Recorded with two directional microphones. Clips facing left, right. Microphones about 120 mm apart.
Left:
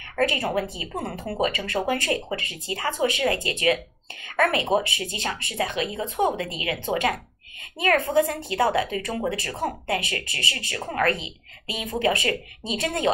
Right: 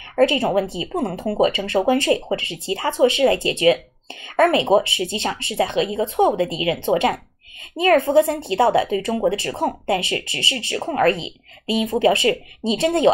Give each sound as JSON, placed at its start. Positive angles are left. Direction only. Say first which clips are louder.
{"t": 0.1, "sound": "speech", "louder": "right 7 dB", "side_deg": -25}